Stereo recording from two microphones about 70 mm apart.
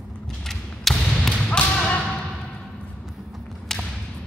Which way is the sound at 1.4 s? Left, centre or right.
Centre.